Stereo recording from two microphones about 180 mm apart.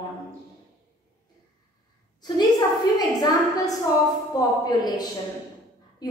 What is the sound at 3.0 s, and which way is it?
A woman's voice, 20° left (ahead or behind).